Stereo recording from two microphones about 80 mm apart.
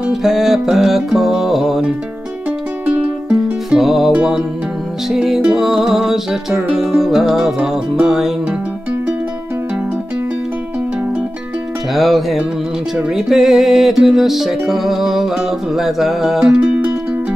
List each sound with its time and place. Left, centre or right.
0.0 s music: centre
2.9 s music: centre
3.7 s music: centre
11.9 s music: centre